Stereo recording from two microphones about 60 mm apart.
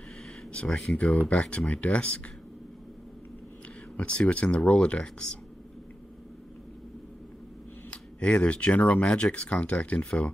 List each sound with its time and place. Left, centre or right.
0.5 s speech: centre
3.9 s speech: centre
7.9 s speech: centre